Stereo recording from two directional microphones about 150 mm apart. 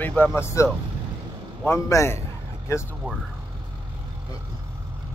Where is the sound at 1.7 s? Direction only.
20° left (ahead or behind).